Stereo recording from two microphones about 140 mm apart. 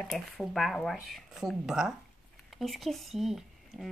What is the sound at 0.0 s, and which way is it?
Speech, centre (ahead or behind).